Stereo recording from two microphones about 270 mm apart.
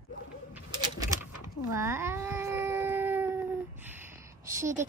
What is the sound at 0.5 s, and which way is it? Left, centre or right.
Bird, left.